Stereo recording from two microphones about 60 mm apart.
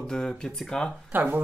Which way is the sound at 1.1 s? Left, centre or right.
Right.